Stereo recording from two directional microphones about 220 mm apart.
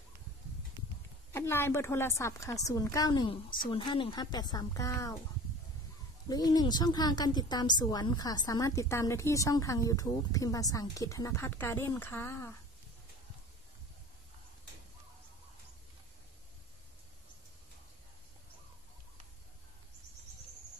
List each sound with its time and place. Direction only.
1.3 s speech: 10° left (ahead or behind)
6.2 s speech: 15° left (ahead or behind)